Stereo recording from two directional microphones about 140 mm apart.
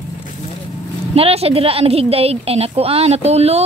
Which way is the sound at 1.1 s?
45° right (ahead or behind).